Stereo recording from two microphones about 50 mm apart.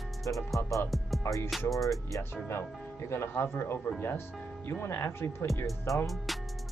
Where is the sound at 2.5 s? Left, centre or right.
Left.